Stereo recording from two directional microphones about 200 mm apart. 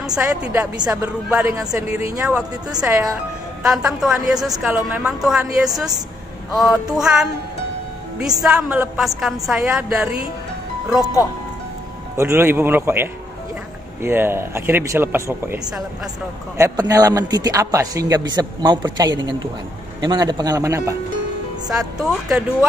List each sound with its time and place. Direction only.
0.0 s speech: 5° right (ahead or behind)
2.2 s a woman's voice: 5° right (ahead or behind)
6.5 s a woman's voice: centre (ahead or behind)
12.2 s a man's voice: 10° right (ahead or behind)
21.6 s a woman's voice: centre (ahead or behind)